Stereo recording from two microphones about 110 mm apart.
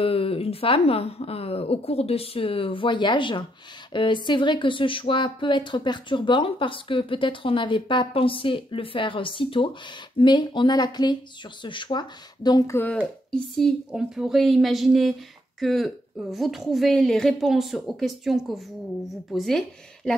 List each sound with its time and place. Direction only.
0.0 s speech: 60° left (ahead or behind); by 12.6 s 40° left (ahead or behind)
12.6 s speech: 20° left (ahead or behind)
13.3 s a woman's voice: 5° left (ahead or behind)